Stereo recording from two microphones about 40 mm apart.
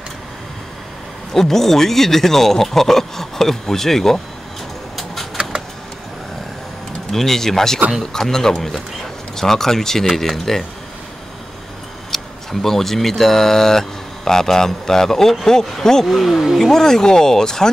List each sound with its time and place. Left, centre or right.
1.3 s speech: centre
4.9 s bird: centre
7.1 s speech: centre
12.1 s speech: centre
16.1 s speech: centre
16.5 s speech: centre